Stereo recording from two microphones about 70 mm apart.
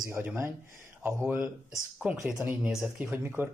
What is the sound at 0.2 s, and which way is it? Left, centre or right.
Speech, right.